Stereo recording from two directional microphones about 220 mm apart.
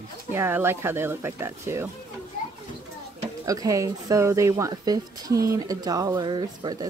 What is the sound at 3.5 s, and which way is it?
Speech, 15° right (ahead or behind).